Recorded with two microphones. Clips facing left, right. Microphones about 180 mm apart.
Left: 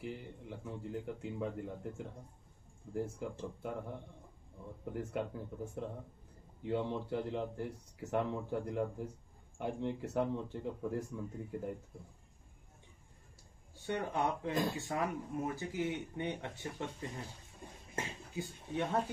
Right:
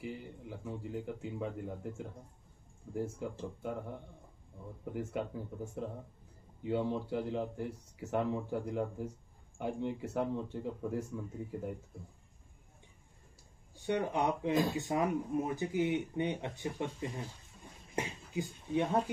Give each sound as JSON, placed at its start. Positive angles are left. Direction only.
{"t": 0.0, "sound": "speech", "side_deg": 0}
{"t": 4.9, "sound": "speech", "side_deg": 0}
{"t": 13.8, "sound": "speech", "side_deg": -15}
{"t": 17.9, "sound": "a sound", "side_deg": -15}